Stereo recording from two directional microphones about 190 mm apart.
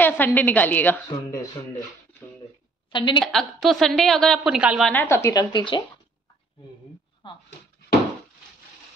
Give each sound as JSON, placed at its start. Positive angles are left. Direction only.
{"t": 0.0, "sound": "a woman's voice", "side_deg": 10}
{"t": 2.9, "sound": "a woman's voice", "side_deg": 25}
{"t": 3.3, "sound": "a woman's voice", "side_deg": 0}
{"t": 4.9, "sound": "speech", "side_deg": 15}
{"t": 7.2, "sound": "speech", "side_deg": 25}